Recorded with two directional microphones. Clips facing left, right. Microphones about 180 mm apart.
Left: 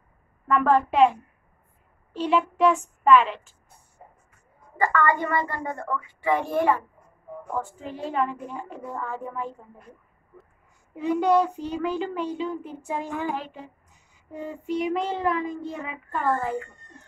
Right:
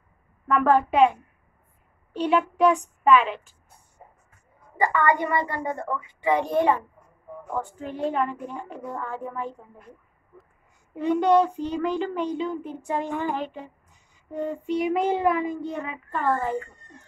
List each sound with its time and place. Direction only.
0.5 s speech: centre (ahead or behind)
2.1 s speech: centre (ahead or behind)
4.7 s a woman's voice: 15° right (ahead or behind)
7.6 s speech: centre (ahead or behind)
11.0 s speech: 5° left (ahead or behind)